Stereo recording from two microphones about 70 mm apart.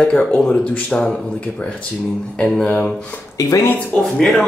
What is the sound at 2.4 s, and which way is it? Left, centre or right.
Speech, centre.